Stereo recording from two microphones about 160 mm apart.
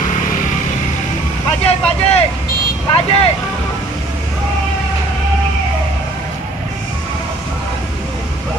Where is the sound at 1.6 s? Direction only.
40° left (ahead or behind).